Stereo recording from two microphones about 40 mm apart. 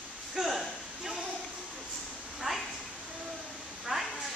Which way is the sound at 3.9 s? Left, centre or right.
Centre.